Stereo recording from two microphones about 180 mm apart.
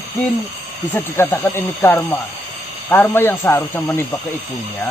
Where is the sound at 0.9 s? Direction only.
10° left (ahead or behind).